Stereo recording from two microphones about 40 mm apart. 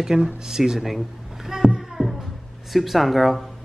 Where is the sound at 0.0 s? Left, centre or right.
Centre.